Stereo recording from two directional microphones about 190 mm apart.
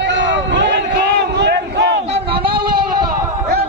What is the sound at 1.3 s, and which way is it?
Battle cry, 60° right (ahead or behind).